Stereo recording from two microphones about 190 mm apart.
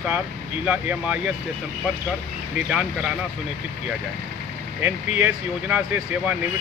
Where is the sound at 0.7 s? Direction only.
5° right (ahead or behind).